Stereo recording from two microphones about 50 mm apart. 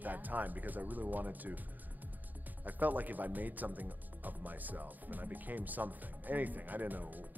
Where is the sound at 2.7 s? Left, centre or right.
Right.